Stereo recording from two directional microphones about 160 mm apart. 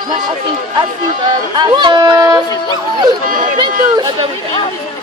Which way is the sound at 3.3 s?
55° right (ahead or behind).